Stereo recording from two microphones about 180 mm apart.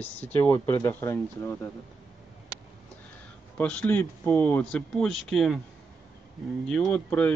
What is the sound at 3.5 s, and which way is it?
Speech, 5° left (ahead or behind).